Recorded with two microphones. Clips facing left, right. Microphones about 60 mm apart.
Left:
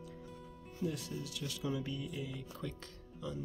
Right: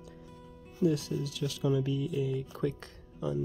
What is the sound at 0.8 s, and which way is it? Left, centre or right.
Music, right.